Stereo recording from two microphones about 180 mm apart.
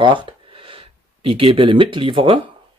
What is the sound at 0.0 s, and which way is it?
Speech, 25° right (ahead or behind).